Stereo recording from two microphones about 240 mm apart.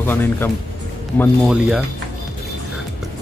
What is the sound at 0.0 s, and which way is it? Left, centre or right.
Speech, centre.